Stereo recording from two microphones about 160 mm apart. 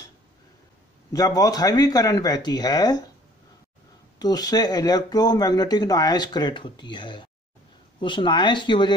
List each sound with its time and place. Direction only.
1.1 s speech: 20° left (ahead or behind)
4.2 s speech: 25° left (ahead or behind)